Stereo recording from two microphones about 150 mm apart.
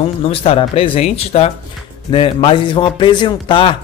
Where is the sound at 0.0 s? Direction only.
40° left (ahead or behind).